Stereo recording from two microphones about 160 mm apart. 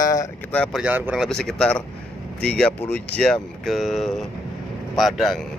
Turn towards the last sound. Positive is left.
turn(degrees=0)  # may be behind; listen again after turning